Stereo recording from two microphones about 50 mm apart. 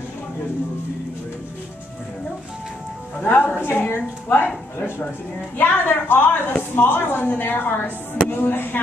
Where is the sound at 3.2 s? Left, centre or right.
Left.